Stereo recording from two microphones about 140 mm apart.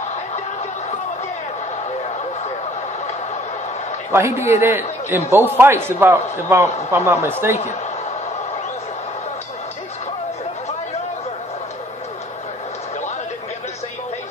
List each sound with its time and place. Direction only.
4.1 s a man's voice: 20° right (ahead or behind)